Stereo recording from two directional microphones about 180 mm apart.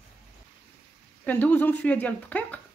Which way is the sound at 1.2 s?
10° left (ahead or behind).